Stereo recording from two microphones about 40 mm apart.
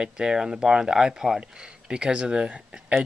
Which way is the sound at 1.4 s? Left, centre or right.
Right.